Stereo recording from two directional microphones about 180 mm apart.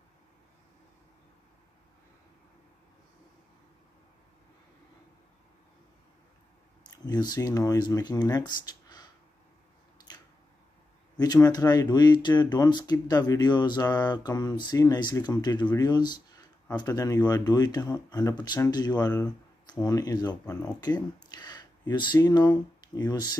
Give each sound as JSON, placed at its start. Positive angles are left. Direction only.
{"t": 6.8, "sound": "speech", "side_deg": 20}
{"t": 11.1, "sound": "speech", "side_deg": 20}